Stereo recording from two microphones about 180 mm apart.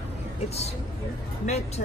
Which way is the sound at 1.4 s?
35° left (ahead or behind).